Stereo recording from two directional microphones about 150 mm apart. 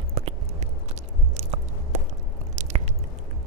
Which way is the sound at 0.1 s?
45° right (ahead or behind).